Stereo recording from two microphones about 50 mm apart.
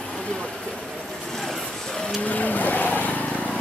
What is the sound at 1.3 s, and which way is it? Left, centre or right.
Vehicle, centre.